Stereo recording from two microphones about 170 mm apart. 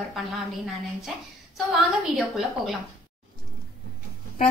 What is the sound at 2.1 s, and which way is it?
Speech, centre (ahead or behind).